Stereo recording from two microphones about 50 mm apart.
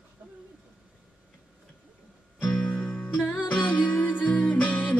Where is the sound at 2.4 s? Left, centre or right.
Left.